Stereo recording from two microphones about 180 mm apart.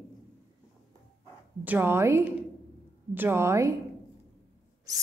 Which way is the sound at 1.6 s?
10° right (ahead or behind).